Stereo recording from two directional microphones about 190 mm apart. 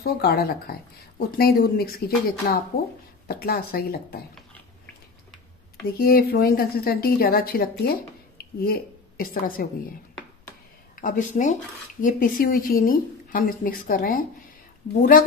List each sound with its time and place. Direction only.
0.0 s a woman's voice: 55° left (ahead or behind)
5.9 s a woman's voice: 50° left (ahead or behind)
11.0 s a woman's voice: 45° left (ahead or behind)